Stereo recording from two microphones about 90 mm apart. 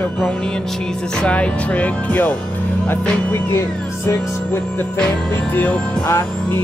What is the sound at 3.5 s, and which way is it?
Music, 30° left (ahead or behind).